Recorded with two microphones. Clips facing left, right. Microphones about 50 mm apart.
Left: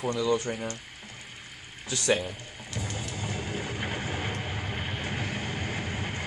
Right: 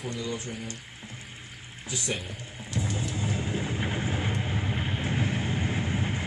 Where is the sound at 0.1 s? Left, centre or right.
Left.